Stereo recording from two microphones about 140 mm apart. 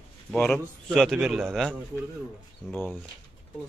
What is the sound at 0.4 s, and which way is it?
Speech, 5° left (ahead or behind).